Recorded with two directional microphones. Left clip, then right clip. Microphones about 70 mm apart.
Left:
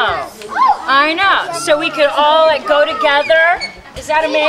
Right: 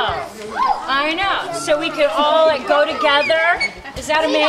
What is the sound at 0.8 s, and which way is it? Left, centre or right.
A woman's voice, left.